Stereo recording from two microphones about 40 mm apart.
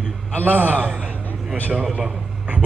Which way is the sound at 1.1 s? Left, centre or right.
Left.